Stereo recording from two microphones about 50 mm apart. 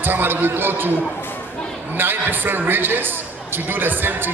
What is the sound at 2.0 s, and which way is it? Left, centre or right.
Speech, right.